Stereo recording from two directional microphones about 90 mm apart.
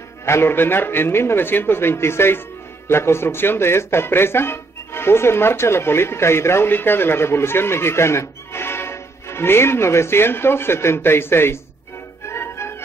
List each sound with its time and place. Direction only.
0.2 s speech: 30° left (ahead or behind)
12.3 s music: 30° left (ahead or behind)